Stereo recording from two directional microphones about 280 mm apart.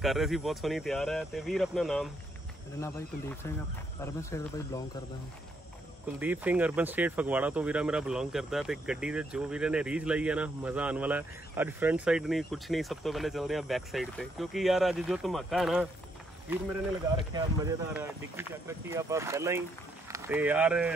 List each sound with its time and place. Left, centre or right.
0.0 s speech: centre
6.1 s speech: centre
17.3 s speech: centre